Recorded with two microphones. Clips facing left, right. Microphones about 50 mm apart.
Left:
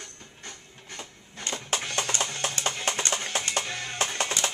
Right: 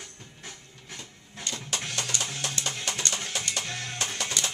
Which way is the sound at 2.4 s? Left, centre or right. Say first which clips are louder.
Left 4 dB; left.